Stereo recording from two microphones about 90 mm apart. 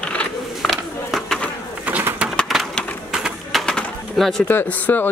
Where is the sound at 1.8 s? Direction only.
20° right (ahead or behind).